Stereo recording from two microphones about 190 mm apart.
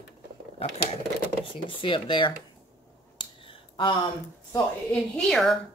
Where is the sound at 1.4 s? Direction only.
25° left (ahead or behind).